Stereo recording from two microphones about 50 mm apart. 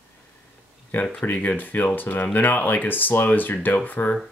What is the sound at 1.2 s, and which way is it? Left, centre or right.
Speech, left.